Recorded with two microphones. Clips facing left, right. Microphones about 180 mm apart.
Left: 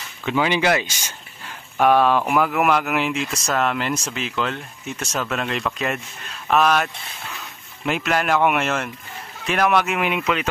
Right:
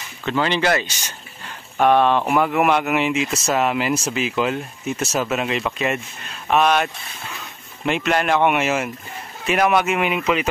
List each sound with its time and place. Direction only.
0.2 s speech: 10° left (ahead or behind)